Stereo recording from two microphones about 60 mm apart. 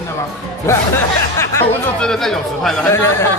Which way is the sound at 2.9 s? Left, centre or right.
Left.